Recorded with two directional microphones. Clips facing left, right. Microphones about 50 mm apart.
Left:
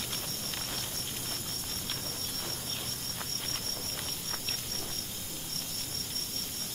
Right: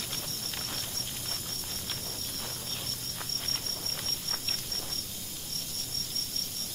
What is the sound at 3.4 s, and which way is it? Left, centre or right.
Cricket, centre.